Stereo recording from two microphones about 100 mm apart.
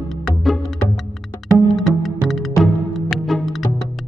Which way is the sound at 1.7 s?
Centre (ahead or behind).